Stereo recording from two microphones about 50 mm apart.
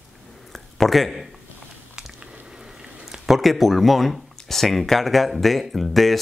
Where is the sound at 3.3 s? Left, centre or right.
Centre.